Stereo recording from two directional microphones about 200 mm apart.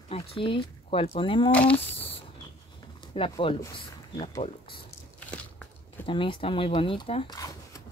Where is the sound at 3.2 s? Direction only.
25° left (ahead or behind).